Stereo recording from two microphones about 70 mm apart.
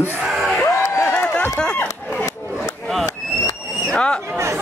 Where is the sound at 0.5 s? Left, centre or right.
Left.